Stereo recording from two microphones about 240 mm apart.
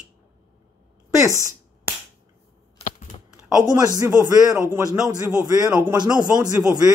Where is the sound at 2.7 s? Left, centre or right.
Left.